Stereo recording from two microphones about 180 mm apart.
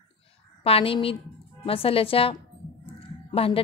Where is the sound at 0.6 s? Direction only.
30° left (ahead or behind).